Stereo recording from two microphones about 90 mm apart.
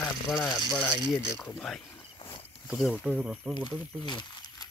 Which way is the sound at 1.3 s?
25° left (ahead or behind).